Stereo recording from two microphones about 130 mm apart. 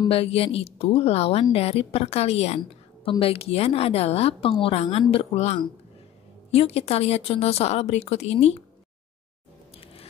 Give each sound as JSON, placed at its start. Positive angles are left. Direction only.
{"t": 0.1, "sound": "a woman's voice", "side_deg": 50}